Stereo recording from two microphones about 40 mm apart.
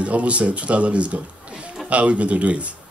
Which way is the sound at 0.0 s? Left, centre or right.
Right.